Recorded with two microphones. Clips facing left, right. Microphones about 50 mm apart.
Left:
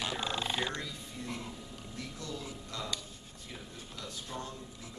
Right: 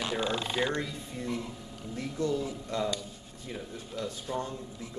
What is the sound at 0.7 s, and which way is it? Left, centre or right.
Speech, right.